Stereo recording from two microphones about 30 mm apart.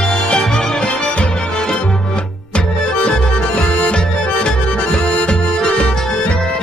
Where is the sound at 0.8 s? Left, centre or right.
Left.